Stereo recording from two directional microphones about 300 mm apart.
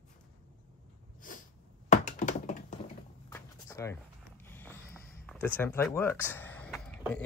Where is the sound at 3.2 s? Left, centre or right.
Centre.